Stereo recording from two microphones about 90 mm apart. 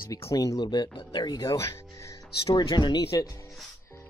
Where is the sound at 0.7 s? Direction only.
55° left (ahead or behind).